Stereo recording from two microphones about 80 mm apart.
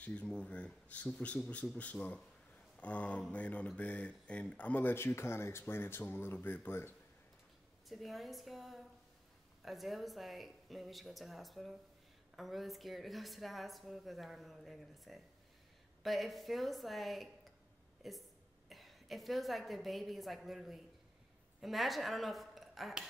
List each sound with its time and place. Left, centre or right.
0.0 s speech: centre
7.9 s a woman's voice: centre